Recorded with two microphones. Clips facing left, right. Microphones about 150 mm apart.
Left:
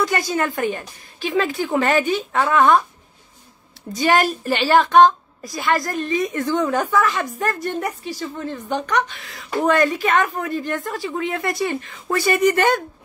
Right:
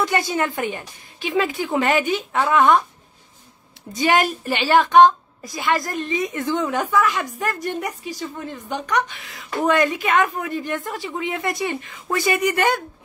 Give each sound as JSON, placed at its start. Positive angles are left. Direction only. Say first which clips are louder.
{"t": 0.0, "sound": "a woman's voice", "louder": "even", "side_deg": -20}
{"t": 4.0, "sound": "a woman's voice", "louder": "left 1 dB", "side_deg": -20}